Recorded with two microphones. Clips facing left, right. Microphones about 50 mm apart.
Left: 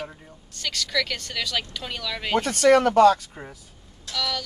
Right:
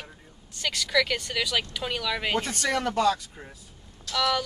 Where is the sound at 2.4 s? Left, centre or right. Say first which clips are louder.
Left 10 dB; left.